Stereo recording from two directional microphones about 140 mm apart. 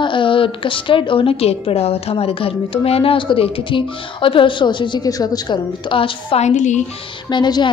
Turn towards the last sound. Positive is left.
turn(degrees=30)  # may be behind; listen again after turning